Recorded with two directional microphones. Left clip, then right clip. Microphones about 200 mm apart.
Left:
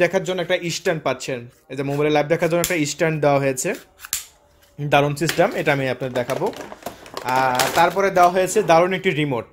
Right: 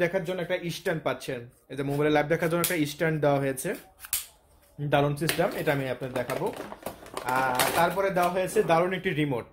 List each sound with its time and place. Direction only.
0.0 s speech: 40° left (ahead or behind)
4.8 s speech: 35° left (ahead or behind)
7.2 s speech: 45° left (ahead or behind); by 9.5 s 25° left (ahead or behind)